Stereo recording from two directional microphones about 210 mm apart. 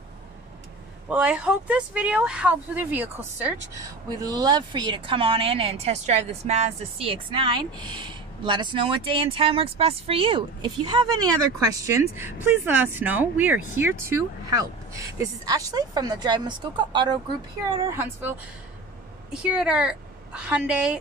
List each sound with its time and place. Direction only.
1.0 s speech: 5° right (ahead or behind)
19.5 s a woman's voice: 5° right (ahead or behind)